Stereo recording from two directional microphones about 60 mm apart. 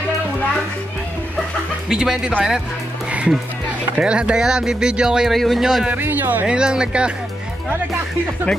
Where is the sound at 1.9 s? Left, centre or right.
Centre.